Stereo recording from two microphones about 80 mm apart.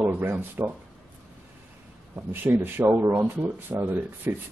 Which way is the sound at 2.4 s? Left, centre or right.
Right.